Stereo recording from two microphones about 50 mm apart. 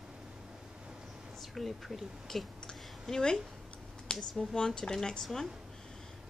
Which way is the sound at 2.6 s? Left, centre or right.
Centre.